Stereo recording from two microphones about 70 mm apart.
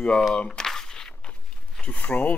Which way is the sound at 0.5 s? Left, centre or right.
Centre.